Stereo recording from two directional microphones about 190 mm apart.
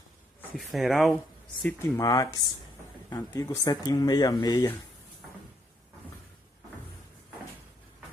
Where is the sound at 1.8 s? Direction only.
20° left (ahead or behind).